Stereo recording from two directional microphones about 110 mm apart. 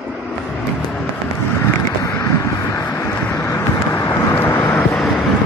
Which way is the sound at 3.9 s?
25° left (ahead or behind).